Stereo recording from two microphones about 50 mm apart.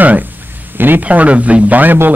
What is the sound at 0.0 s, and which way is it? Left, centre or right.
A man's voice, right.